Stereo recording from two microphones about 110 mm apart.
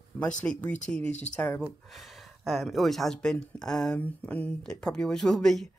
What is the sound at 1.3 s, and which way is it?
Speech, 15° left (ahead or behind).